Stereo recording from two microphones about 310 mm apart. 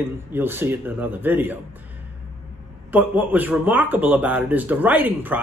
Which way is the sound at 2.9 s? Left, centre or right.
Centre.